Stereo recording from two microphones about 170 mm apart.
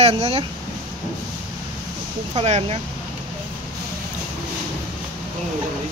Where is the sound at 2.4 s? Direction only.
35° right (ahead or behind).